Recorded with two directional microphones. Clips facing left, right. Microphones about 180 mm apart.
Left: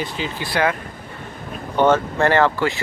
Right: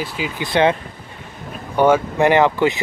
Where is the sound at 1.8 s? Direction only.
15° right (ahead or behind).